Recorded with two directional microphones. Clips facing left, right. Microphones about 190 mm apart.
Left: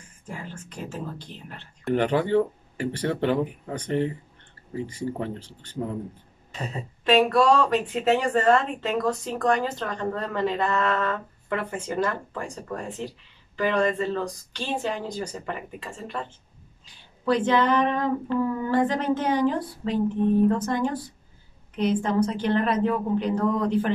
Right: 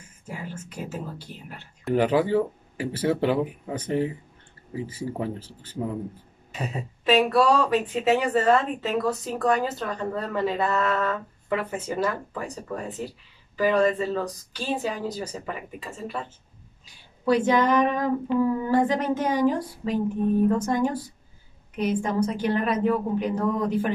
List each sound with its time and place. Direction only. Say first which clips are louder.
0.3 s speech: right 1 dB; 10° right (ahead or behind)